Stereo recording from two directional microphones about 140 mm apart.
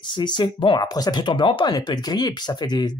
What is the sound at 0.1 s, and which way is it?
Speech, 30° left (ahead or behind).